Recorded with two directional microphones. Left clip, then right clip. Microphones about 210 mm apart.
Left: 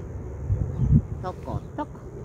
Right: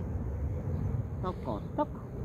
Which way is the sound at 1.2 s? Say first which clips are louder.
Left 3 dB; 20° right (ahead or behind).